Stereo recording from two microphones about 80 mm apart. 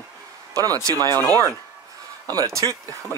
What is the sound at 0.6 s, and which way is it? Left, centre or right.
Speech, right.